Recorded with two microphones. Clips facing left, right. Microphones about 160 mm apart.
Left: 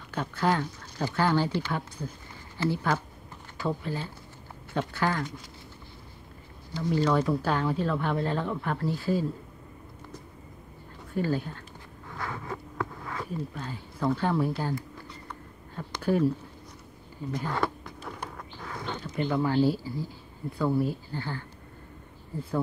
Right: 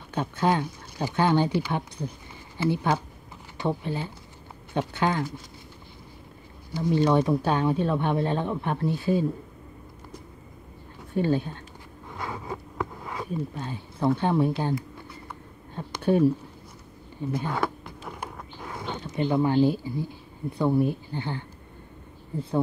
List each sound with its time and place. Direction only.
0.1 s speech: 20° right (ahead or behind)
6.7 s speech: 15° right (ahead or behind)
11.1 s speech: 20° right (ahead or behind)
12.1 s a sound: 15° right (ahead or behind)
16.0 s speech: 25° right (ahead or behind)
17.5 s a sound: 10° right (ahead or behind)
18.9 s speech: 20° right (ahead or behind)